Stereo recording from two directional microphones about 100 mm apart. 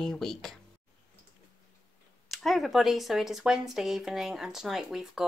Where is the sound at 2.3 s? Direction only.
Centre (ahead or behind).